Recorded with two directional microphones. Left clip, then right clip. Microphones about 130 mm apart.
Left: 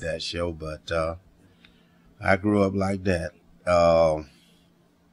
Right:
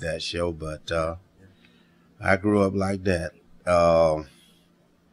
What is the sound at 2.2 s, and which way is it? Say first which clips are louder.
Speech: right 1 dB; 25° left (ahead or behind).